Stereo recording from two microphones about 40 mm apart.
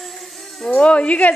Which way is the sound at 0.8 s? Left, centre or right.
Left.